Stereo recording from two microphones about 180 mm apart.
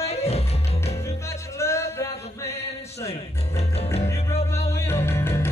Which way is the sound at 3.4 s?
35° left (ahead or behind).